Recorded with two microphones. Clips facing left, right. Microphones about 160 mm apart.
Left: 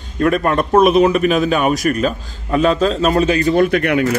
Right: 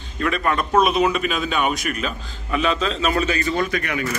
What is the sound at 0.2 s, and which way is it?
A man's voice, 45° left (ahead or behind).